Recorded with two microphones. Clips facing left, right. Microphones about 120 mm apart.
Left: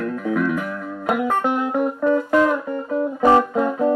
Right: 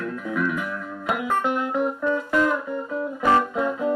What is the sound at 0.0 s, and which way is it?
Music, 50° left (ahead or behind).